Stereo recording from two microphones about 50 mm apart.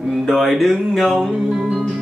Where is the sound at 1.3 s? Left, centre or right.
Centre.